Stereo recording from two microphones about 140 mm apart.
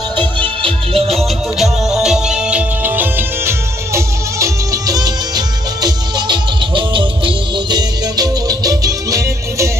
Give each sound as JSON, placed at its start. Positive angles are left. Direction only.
{"t": 0.6, "sound": "music", "side_deg": -40}
{"t": 1.1, "sound": "music", "side_deg": 0}